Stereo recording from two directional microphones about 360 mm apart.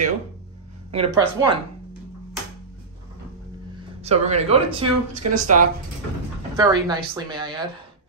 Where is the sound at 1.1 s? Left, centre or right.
Centre.